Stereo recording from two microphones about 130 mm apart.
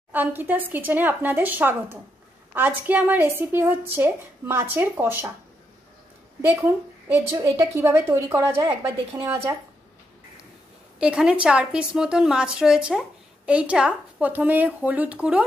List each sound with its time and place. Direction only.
0.1 s a woman's voice: 15° right (ahead or behind)
6.4 s a woman's voice: 15° right (ahead or behind)
11.0 s a woman's voice: 5° right (ahead or behind)